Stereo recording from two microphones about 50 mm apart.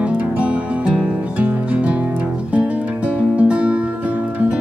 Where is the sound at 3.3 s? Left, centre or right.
Right.